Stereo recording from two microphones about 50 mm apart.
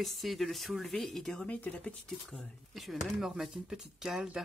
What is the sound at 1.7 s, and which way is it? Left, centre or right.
Speech, left.